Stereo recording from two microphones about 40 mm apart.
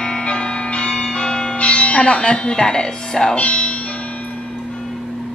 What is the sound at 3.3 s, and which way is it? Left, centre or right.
Speech, left.